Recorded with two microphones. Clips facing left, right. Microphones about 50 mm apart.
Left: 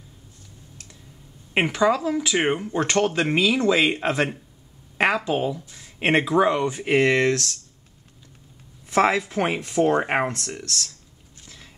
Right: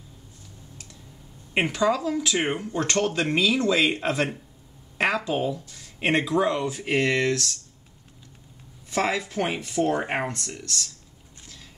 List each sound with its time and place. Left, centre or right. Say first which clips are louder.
1.5 s speech: left 3 dB; centre
8.9 s speech: left 5 dB; centre
11.4 s boat: left 1 dB; centre